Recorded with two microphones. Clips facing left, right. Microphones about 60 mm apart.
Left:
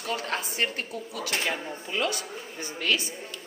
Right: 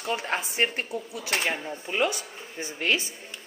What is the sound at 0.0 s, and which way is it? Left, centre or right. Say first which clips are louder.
A woman's voice: right 2 dB; right.